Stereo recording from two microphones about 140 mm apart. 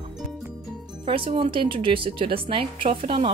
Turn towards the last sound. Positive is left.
turn(degrees=-40)  # may be behind; listen again after turning